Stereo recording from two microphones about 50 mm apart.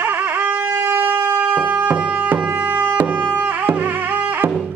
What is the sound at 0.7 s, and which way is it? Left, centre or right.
Shofar, right.